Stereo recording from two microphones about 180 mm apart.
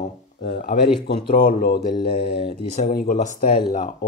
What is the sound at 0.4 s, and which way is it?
Speech, 60° left (ahead or behind).